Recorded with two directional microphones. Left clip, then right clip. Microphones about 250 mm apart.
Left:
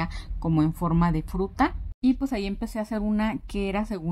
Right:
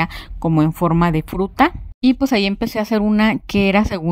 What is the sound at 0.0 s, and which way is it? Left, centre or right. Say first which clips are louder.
Speech: right 11 dB; right.